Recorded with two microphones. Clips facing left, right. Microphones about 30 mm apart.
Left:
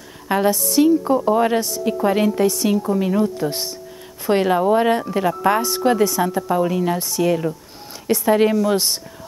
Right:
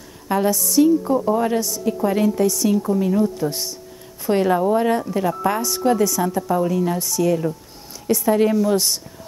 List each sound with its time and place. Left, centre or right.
0.3 s a woman's voice: left